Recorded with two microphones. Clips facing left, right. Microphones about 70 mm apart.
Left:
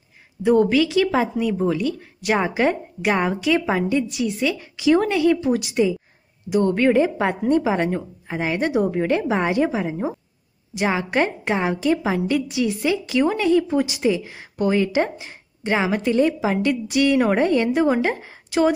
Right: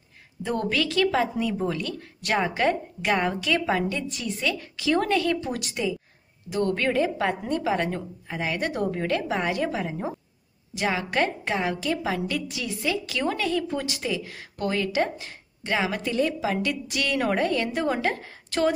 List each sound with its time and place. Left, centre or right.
0.4 s a woman's voice: centre
10.7 s a woman's voice: left